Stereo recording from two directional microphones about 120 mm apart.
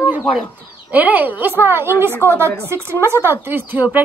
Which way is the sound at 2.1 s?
15° left (ahead or behind).